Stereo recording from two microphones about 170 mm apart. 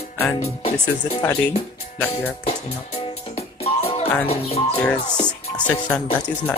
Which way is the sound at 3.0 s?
40° left (ahead or behind).